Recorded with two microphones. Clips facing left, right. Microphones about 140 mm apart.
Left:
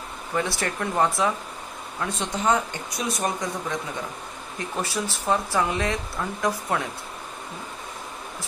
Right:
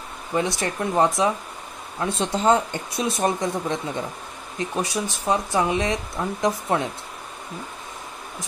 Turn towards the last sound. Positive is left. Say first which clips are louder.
# right 3 dB
turn(degrees=-20)  # may be behind; listen again after turning